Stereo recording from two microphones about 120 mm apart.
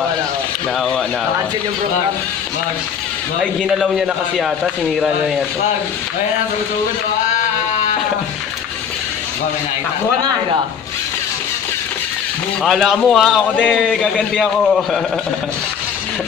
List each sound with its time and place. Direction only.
3.6 s a man's voice: 5° right (ahead or behind)
12.6 s a man's voice: centre (ahead or behind)